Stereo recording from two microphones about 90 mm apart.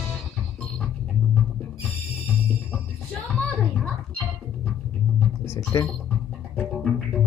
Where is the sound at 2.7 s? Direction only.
15° left (ahead or behind).